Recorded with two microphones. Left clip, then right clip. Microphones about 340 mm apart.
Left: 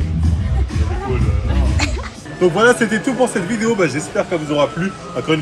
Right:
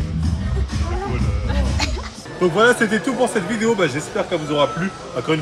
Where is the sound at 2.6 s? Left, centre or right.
Centre.